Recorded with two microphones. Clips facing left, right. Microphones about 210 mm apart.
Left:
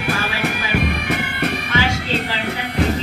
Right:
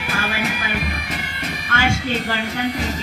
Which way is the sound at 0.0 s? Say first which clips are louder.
Left 2 dB; 60° left (ahead or behind).